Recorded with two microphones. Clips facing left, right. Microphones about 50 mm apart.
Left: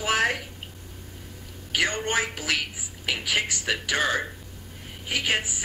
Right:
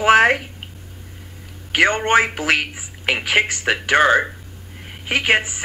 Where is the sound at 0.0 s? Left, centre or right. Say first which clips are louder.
Right 11 dB; right.